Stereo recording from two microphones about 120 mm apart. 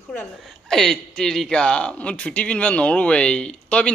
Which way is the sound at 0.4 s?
Centre (ahead or behind).